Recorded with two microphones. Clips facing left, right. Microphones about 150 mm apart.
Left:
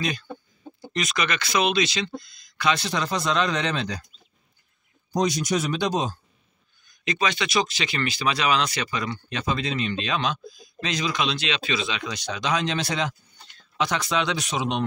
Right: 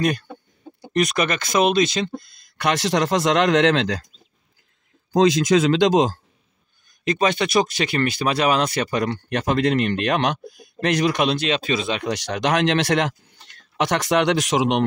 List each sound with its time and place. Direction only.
0.9 s speech: 55° right (ahead or behind); by 4.1 s 85° right
5.1 s speech: 90° right
7.1 s speech: 50° right (ahead or behind)
12.1 s speech: 75° right (ahead or behind)